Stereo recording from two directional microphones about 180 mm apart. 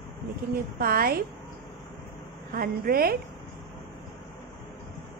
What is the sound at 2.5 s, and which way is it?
Speech, 55° right (ahead or behind).